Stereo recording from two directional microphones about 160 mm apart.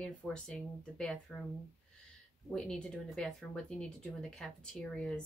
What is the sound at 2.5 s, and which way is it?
A woman's voice, 5° left (ahead or behind).